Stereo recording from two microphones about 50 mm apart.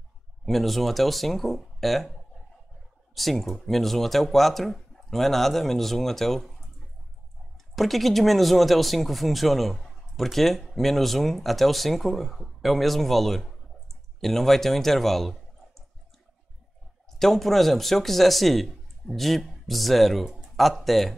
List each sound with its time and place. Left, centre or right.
0.5 s speech: centre
3.2 s speech: centre
7.7 s speech: centre
17.2 s speech: centre